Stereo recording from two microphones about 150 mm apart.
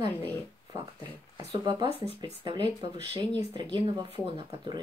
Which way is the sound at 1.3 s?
30° right (ahead or behind).